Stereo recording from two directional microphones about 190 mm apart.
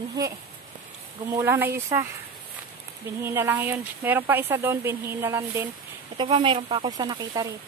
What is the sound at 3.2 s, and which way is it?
Speech, 10° right (ahead or behind).